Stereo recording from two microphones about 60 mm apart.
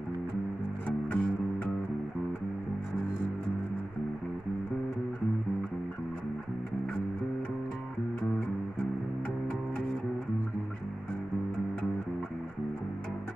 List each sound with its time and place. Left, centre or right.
0.8 s music: left